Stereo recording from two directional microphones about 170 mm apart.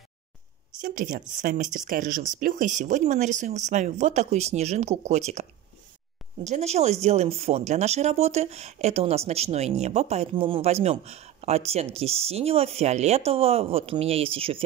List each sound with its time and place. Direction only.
0.7 s speech: 50° right (ahead or behind); by 14.6 s 35° right (ahead or behind)